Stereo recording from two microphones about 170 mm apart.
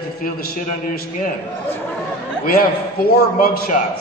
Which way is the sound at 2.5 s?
60° left (ahead or behind).